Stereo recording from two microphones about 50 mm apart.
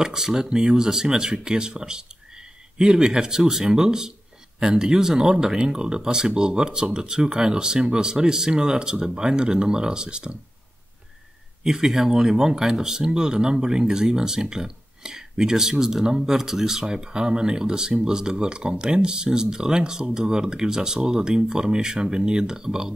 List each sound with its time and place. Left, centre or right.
0.0 s speech: centre
11.6 s speech: centre